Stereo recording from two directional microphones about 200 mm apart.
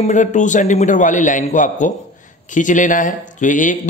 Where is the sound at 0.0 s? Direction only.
40° left (ahead or behind).